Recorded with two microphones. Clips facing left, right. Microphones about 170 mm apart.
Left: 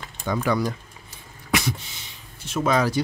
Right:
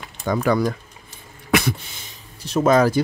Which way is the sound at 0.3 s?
45° right (ahead or behind).